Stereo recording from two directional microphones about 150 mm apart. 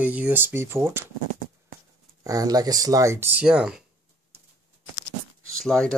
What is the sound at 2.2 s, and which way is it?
Speech, 25° right (ahead or behind).